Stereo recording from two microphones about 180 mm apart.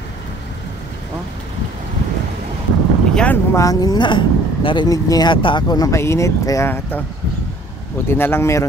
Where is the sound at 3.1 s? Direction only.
10° left (ahead or behind).